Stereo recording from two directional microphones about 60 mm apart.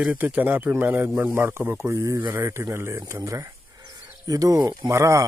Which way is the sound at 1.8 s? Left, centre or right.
Right.